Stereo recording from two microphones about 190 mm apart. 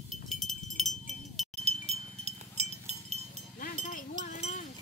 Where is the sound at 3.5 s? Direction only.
50° left (ahead or behind).